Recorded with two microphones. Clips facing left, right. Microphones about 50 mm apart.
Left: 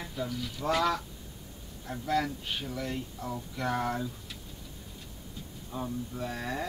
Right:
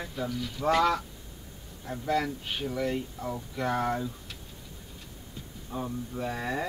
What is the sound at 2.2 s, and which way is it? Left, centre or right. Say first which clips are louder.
Speech: right 2 dB; centre.